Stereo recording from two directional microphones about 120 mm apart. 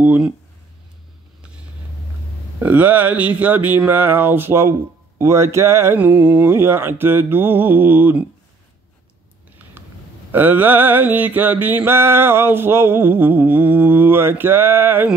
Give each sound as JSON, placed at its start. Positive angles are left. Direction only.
{"t": 0.0, "sound": "a sound", "side_deg": -15}
{"t": 2.6, "sound": "mantra", "side_deg": -15}
{"t": 5.2, "sound": "music", "side_deg": -25}
{"t": 5.9, "sound": "mantra", "side_deg": -15}
{"t": 10.3, "sound": "mantra", "side_deg": -15}